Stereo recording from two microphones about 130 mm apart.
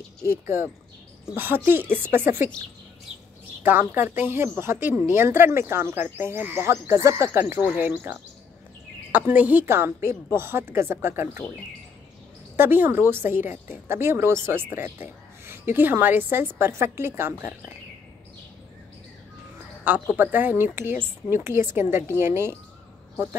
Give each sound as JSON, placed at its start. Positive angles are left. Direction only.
{"t": 0.3, "sound": "a woman's voice", "side_deg": -20}
{"t": 3.6, "sound": "a woman's voice", "side_deg": -15}
{"t": 12.5, "sound": "a woman's voice", "side_deg": -15}
{"t": 19.9, "sound": "a woman's voice", "side_deg": -15}